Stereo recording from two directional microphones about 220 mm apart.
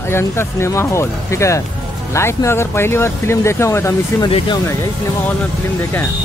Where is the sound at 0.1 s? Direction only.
10° left (ahead or behind).